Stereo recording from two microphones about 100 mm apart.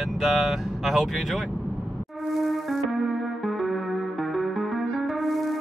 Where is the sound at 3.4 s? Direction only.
Centre (ahead or behind).